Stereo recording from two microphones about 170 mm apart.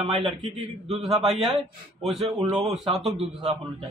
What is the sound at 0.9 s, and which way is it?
Speech, centre (ahead or behind).